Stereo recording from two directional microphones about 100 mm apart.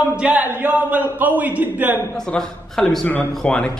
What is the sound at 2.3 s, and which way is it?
A man's voice, 5° left (ahead or behind).